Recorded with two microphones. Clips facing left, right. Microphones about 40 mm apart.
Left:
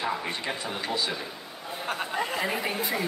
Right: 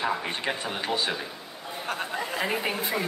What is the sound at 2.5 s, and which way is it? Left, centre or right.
Speech, right.